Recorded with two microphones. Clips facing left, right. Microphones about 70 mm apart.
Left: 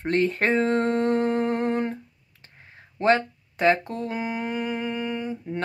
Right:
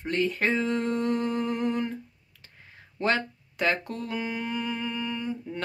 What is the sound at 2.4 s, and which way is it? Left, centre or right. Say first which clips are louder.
Speech: left 2 dB; left.